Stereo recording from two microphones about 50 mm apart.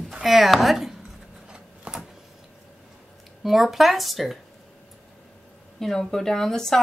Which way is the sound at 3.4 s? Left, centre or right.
Centre.